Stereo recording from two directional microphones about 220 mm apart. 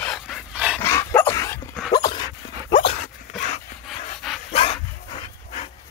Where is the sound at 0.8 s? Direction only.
10° left (ahead or behind).